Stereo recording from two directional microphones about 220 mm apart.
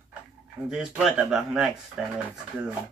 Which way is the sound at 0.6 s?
5° right (ahead or behind).